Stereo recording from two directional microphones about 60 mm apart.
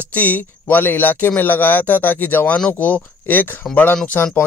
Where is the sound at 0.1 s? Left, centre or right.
Left.